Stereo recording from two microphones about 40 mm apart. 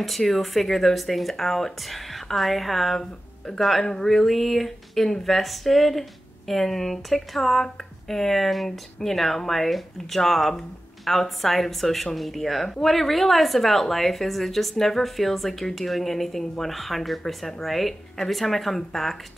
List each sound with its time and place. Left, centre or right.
0.0 s a woman's voice: centre
3.0 s speech: centre
3.6 s a woman's voice: centre